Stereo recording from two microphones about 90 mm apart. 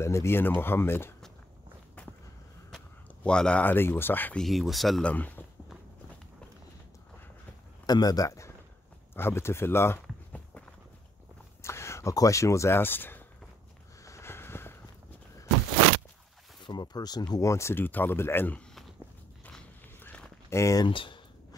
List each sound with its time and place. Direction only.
0.0 s speech: 30° left (ahead or behind)
3.3 s speech: 10° left (ahead or behind)
3.6 s speech: 25° left (ahead or behind)
4.4 s speech: centre (ahead or behind)
5.0 s speech: 20° left (ahead or behind)
7.8 s speech: 45° left (ahead or behind); by 9.9 s 30° left (ahead or behind)
11.6 s speech: 30° left (ahead or behind)
14.0 s a sound: 30° left (ahead or behind)
16.6 s speech: 50° left (ahead or behind)
17.4 s speech: 35° left (ahead or behind)
20.0 s a sound: 20° left (ahead or behind)
20.4 s speech: 35° left (ahead or behind)
20.8 s speech: 70° left (ahead or behind)